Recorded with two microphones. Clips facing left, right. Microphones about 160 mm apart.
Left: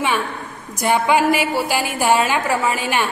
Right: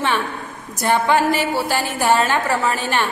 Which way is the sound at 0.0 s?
10° left (ahead or behind).